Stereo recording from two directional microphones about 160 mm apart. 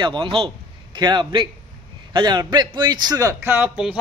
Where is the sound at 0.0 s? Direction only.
30° right (ahead or behind).